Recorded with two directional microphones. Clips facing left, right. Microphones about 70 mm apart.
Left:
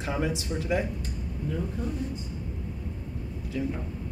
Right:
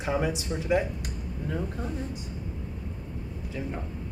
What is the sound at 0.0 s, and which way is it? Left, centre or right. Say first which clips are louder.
Speech: right 2 dB; right.